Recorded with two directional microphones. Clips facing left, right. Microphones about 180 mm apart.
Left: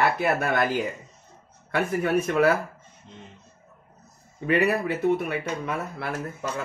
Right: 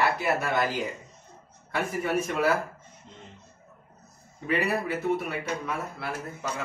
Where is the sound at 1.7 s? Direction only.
60° left (ahead or behind).